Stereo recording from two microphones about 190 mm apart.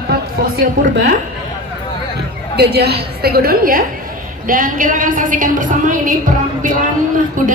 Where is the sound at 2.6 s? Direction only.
55° right (ahead or behind).